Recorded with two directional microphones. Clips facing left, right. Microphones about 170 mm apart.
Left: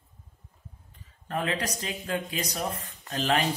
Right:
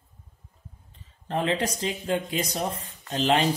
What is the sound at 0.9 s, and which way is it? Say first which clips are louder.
Speech: right 3 dB; 25° right (ahead or behind).